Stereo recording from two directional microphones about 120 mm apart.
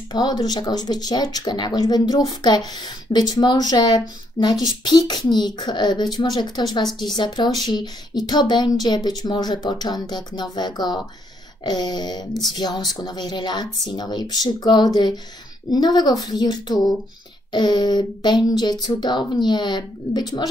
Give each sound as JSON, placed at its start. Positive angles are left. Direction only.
{"t": 0.1, "sound": "speech", "side_deg": 35}